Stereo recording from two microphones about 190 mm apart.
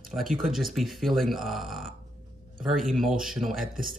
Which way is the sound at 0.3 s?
Centre (ahead or behind).